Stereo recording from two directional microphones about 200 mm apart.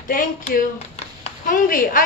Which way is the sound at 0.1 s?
40° left (ahead or behind).